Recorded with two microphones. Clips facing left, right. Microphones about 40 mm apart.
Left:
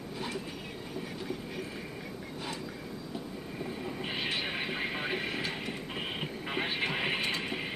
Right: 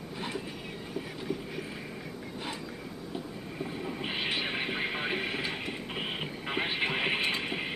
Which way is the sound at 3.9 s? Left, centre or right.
Centre.